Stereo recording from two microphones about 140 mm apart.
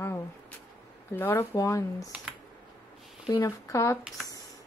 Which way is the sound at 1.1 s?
15° left (ahead or behind).